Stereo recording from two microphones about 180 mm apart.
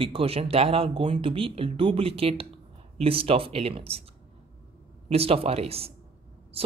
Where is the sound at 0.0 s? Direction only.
30° right (ahead or behind).